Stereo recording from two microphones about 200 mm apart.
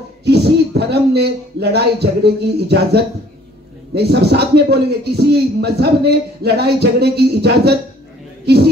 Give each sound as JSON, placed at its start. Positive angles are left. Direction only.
{"t": 0.2, "sound": "speech", "side_deg": -55}